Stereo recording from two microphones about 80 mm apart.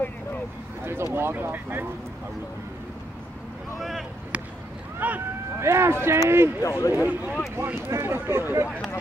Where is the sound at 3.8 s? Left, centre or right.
Centre.